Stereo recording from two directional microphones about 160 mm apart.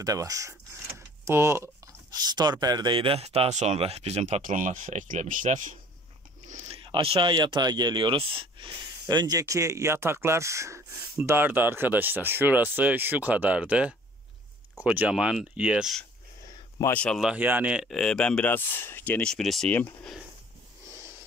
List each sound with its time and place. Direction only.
0.0 s speech: 20° right (ahead or behind); by 4.4 s 40° right (ahead or behind)
4.4 s speech: 55° right (ahead or behind)
6.4 s a sound: 50° right (ahead or behind)
6.8 s speech: 35° right (ahead or behind); by 16.1 s centre (ahead or behind)
16.4 s a sound: 25° left (ahead or behind)
16.9 s speech: 5° left (ahead or behind)